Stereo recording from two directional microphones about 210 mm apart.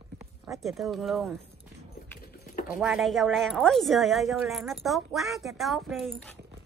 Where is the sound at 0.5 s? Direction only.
Centre (ahead or behind).